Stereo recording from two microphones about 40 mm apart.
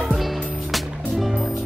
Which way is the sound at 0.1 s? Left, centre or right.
Centre.